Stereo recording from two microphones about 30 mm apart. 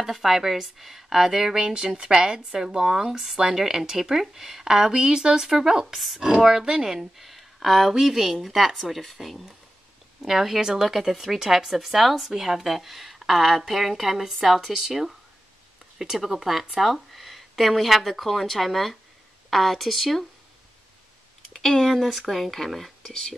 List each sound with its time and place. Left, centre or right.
0.0 s speech: centre
4.6 s speech: right
5.4 s speech: centre
5.9 s speech: centre
6.4 s speech: centre
6.9 s speech: centre
7.9 s speech: centre
21.5 s speech: centre